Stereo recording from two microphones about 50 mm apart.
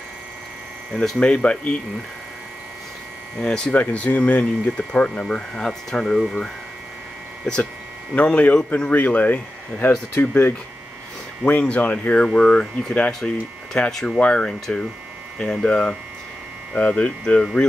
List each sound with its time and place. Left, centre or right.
0.9 s speech: centre
3.3 s speech: centre
3.7 s speech: left
5.5 s speech: centre
8.1 s speech: left
11.4 s speech: left
12.3 s speech: centre